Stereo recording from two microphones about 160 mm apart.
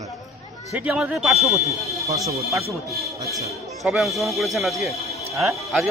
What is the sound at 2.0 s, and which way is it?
Speech, 20° right (ahead or behind).